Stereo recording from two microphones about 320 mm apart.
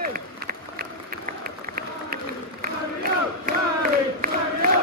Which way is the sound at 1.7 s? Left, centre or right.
Right.